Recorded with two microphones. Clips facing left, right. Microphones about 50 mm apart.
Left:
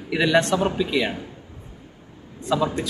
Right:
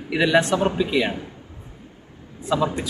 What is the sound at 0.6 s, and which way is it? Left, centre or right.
Speech, centre.